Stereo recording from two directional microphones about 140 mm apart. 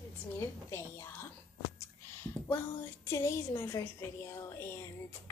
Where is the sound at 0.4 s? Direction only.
20° left (ahead or behind).